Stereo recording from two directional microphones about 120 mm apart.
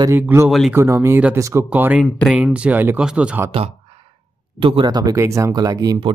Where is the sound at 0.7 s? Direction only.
25° right (ahead or behind).